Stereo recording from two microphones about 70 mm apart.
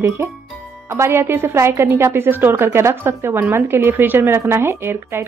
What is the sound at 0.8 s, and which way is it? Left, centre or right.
Speech, right.